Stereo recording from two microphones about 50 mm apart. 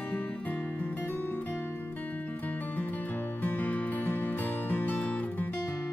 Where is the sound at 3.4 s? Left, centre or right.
Left.